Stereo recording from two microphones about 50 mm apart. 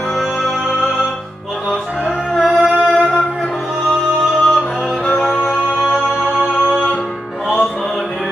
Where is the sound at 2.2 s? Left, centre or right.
Centre.